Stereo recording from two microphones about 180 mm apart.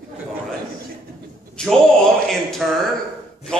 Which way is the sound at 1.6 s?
5° left (ahead or behind).